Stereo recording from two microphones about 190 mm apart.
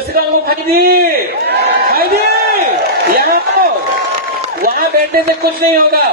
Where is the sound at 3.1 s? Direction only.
50° right (ahead or behind).